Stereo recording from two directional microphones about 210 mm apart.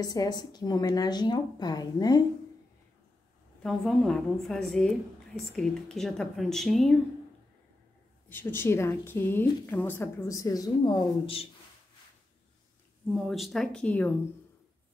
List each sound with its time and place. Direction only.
0.0 s a woman's voice: 20° left (ahead or behind)
3.6 s a woman's voice: 5° left (ahead or behind)
8.3 s a woman's voice: 10° left (ahead or behind)
13.1 s a woman's voice: centre (ahead or behind)